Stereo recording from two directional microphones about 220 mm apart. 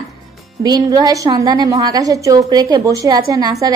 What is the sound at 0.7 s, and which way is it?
A woman's voice, 15° right (ahead or behind).